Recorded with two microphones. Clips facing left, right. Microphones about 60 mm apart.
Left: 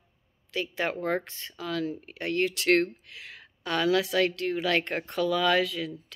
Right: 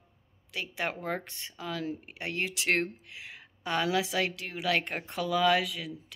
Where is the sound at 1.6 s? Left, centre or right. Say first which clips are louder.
Left 4 dB; centre.